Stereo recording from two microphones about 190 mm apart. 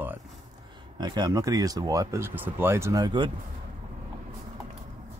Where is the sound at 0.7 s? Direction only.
20° right (ahead or behind).